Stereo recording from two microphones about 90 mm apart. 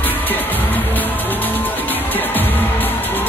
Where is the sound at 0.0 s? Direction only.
20° left (ahead or behind).